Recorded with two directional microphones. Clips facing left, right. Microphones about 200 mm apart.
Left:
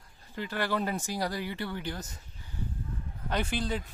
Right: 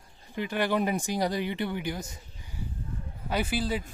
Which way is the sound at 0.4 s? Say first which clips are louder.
Right 4 dB; 15° right (ahead or behind).